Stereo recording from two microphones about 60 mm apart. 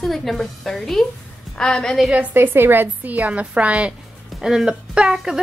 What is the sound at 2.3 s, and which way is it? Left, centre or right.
A woman's voice, right.